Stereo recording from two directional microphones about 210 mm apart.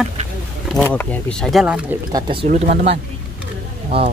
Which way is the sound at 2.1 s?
25° right (ahead or behind).